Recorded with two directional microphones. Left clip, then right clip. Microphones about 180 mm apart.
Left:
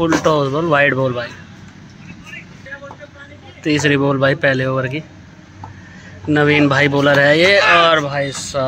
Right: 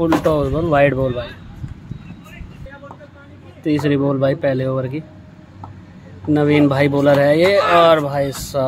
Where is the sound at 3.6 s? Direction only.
5° right (ahead or behind).